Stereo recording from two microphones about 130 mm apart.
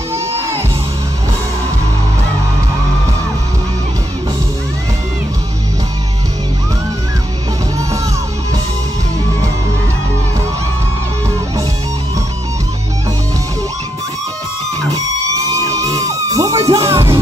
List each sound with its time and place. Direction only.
0.1 s music: 20° right (ahead or behind)
15.6 s music: 25° right (ahead or behind)